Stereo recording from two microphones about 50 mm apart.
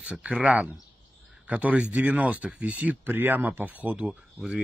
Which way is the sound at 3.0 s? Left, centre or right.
Right.